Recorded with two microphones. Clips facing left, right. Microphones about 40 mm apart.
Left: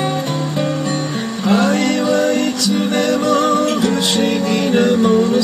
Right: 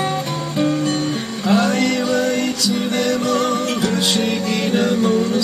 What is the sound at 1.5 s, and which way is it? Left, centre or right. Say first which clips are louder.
Music: left 2 dB; centre.